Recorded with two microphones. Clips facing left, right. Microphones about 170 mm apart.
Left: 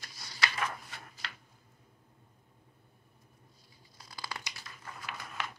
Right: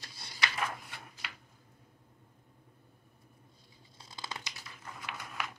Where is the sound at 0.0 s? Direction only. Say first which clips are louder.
Even; 25° right (ahead or behind).